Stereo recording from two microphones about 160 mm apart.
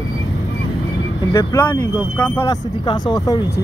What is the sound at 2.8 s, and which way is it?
Speech, 25° left (ahead or behind).